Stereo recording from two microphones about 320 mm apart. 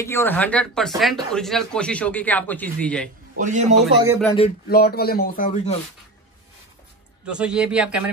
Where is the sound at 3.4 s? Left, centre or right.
Right.